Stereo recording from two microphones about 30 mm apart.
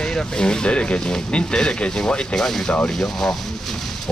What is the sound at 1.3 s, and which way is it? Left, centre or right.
Speech, left.